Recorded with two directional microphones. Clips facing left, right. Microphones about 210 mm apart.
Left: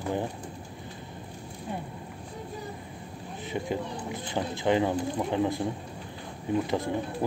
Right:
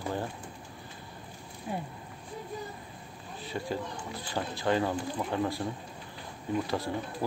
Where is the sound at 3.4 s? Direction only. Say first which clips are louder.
Left 3 dB; 20° left (ahead or behind).